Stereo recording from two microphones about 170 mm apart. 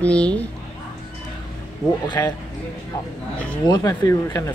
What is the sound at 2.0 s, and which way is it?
Speech, 25° left (ahead or behind).